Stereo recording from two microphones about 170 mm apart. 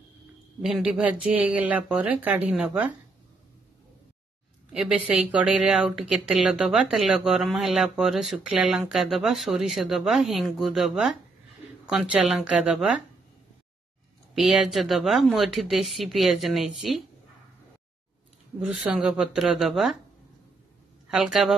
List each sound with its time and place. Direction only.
0.6 s a woman's voice: centre (ahead or behind)
4.7 s a woman's voice: 5° right (ahead or behind)
14.3 s a woman's voice: centre (ahead or behind)
18.6 s a woman's voice: 10° right (ahead or behind)
21.1 s a woman's voice: 5° right (ahead or behind)